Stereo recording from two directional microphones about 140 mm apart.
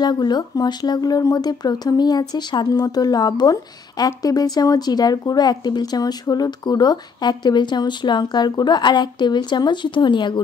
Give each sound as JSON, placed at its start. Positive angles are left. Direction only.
{"t": 0.0, "sound": "speech", "side_deg": 30}